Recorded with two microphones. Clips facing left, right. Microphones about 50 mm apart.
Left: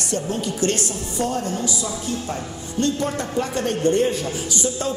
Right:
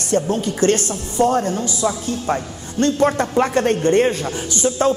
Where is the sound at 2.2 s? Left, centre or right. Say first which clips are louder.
Right 6 dB; right.